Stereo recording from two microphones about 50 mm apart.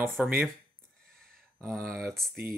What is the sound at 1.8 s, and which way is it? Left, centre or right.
Speech, centre.